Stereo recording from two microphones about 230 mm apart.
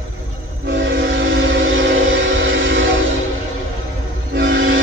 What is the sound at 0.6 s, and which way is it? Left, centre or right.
Train, right.